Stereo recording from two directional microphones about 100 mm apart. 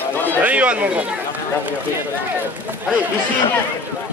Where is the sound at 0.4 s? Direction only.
15° right (ahead or behind).